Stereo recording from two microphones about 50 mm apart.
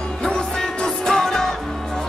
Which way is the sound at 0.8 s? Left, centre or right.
Centre.